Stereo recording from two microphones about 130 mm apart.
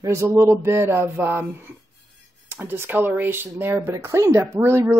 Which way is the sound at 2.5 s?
15° right (ahead or behind).